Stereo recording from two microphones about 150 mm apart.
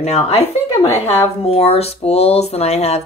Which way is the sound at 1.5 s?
40° left (ahead or behind).